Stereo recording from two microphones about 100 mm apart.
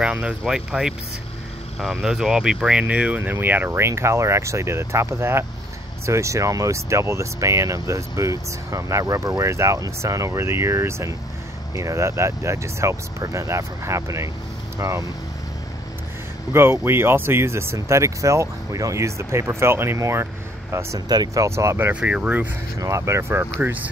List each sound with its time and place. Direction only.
0.0 s speech: 10° right (ahead or behind); by 15.0 s 35° right (ahead or behind)
16.5 s speech: 25° right (ahead or behind)
21.1 s speech: 40° right (ahead or behind)
22.0 s speech: 10° right (ahead or behind)
22.8 s speech: 30° right (ahead or behind)